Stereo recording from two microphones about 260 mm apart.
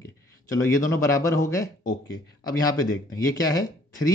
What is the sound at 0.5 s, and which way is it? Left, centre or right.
Speech, centre.